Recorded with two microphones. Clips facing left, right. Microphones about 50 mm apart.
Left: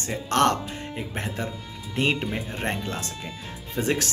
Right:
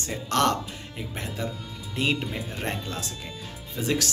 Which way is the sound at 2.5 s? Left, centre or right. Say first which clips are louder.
Left 3 dB; left.